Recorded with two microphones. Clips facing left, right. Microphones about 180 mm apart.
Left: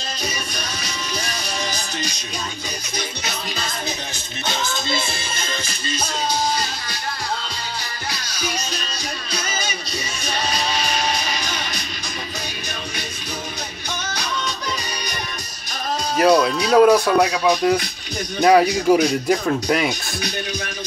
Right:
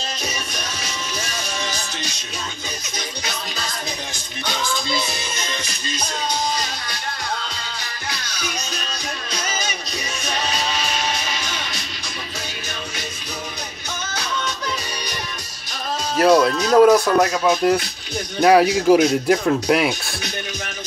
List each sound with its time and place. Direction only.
4.5 s music: 25° left (ahead or behind)
16.2 s speech: centre (ahead or behind)
17.3 s speech: centre (ahead or behind)